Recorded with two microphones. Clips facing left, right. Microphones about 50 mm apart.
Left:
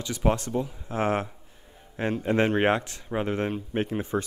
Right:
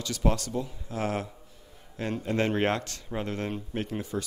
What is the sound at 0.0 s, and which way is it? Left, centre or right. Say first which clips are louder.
Speech: left 3 dB; left.